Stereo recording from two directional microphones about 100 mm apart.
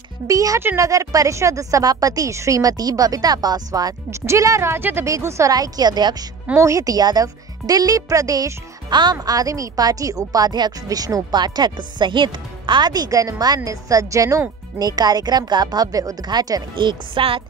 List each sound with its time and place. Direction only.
0.3 s speech: 35° right (ahead or behind)
6.6 s speech: 35° right (ahead or behind)
16.7 s speech: 55° right (ahead or behind)